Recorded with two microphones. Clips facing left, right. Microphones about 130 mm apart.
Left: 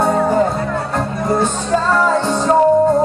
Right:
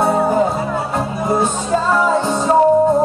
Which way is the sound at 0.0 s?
5° right (ahead or behind).